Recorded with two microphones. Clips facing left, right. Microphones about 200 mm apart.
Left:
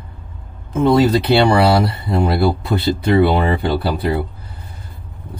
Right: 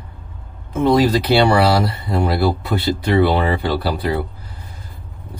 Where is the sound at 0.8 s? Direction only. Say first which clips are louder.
Left 1 dB; 25° left (ahead or behind).